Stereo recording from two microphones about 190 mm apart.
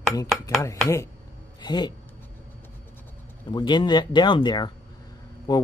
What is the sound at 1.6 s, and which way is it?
Speech, 20° left (ahead or behind).